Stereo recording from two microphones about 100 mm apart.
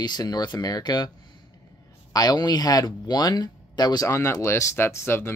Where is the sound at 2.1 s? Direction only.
40° left (ahead or behind).